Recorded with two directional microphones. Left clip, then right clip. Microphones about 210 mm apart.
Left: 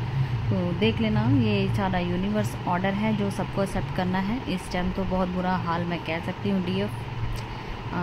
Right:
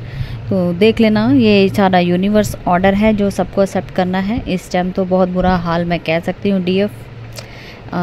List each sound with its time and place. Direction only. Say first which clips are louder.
0.7 s speech: right 14 dB; 50° right (ahead or behind)